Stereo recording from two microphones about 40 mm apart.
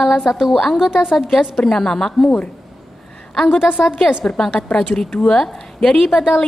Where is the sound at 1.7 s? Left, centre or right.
Centre.